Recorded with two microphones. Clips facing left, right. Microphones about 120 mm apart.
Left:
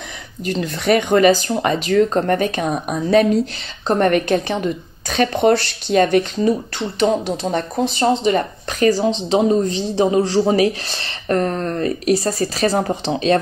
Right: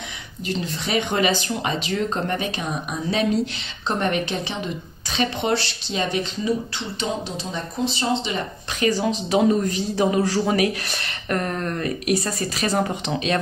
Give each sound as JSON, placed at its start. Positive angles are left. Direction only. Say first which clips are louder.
{"t": 0.5, "sound": "speech", "louder": "left 8 dB", "side_deg": 55}
{"t": 9.0, "sound": "speech", "louder": "left 3 dB", "side_deg": 25}